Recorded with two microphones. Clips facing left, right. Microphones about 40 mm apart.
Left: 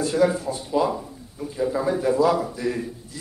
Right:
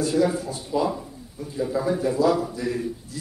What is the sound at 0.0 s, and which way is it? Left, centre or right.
A man's voice, centre.